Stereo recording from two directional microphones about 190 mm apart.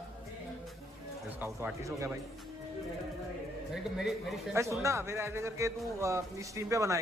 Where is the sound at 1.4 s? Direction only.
15° right (ahead or behind).